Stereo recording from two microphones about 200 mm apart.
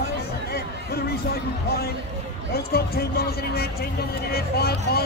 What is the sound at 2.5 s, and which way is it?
Speech, 50° left (ahead or behind).